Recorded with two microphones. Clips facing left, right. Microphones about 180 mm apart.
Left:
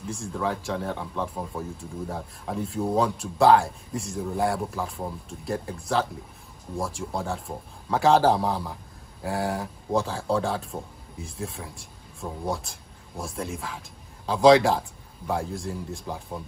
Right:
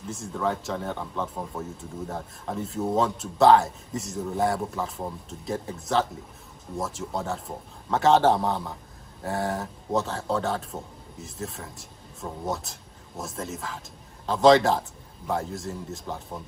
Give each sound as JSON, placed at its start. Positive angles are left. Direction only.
{"t": 0.0, "sound": "speech", "side_deg": -5}